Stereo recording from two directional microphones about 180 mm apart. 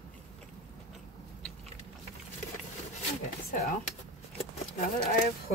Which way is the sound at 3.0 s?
40° left (ahead or behind).